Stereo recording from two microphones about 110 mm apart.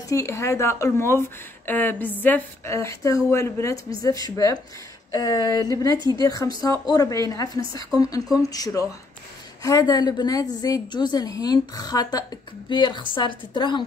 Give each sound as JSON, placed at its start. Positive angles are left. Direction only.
{"t": 0.1, "sound": "speech", "side_deg": 25}
{"t": 1.7, "sound": "a sound", "side_deg": 15}
{"t": 2.6, "sound": "a woman's voice", "side_deg": 25}